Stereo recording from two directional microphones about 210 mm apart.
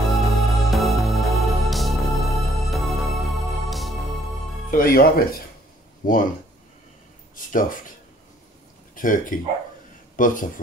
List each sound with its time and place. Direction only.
0.0 s music: centre (ahead or behind)
4.6 s speech: 45° left (ahead or behind)
6.0 s speech: 40° left (ahead or behind)
7.3 s speech: 40° left (ahead or behind)
8.9 s speech: 40° left (ahead or behind)